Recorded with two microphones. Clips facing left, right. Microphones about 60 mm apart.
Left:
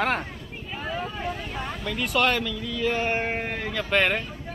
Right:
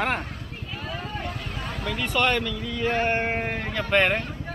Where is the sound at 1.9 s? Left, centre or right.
Centre.